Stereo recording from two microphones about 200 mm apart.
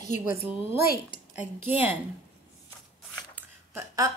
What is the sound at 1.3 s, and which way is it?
Speech, 10° right (ahead or behind).